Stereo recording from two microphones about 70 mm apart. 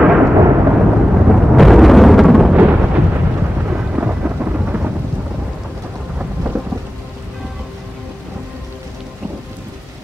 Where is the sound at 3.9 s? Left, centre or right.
Right.